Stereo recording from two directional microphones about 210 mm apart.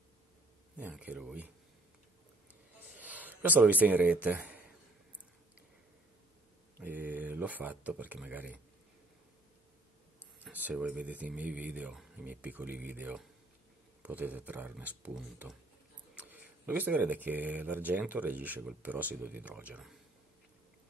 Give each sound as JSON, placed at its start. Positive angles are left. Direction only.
{"t": 0.7, "sound": "speech", "side_deg": -5}
{"t": 3.0, "sound": "speech", "side_deg": -5}
{"t": 6.8, "sound": "a sound", "side_deg": -10}
{"t": 10.4, "sound": "speech", "side_deg": -5}